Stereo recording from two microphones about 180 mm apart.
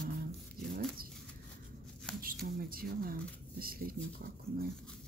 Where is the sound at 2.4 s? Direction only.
55° right (ahead or behind).